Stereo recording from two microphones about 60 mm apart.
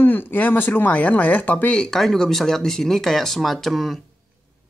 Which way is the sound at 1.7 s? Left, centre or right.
Centre.